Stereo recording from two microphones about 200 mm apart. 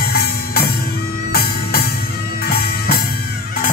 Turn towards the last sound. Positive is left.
turn(degrees=50)  # may be behind; listen again after turning